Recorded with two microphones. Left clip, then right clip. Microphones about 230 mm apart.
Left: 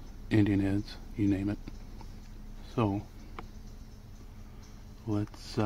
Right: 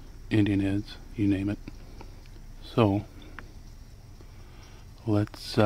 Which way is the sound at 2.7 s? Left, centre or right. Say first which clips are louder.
Right 7 dB; right.